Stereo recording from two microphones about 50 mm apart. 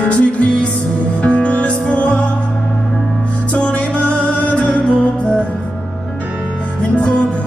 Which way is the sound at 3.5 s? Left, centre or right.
Left.